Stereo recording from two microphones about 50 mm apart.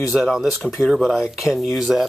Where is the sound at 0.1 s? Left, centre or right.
Centre.